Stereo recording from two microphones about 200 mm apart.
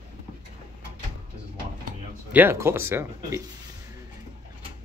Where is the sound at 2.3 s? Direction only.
10° right (ahead or behind).